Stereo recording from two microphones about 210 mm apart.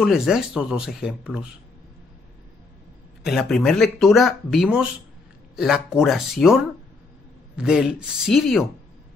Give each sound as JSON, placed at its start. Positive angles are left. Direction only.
{"t": 0.0, "sound": "speech", "side_deg": 0}
{"t": 3.3, "sound": "speech", "side_deg": 0}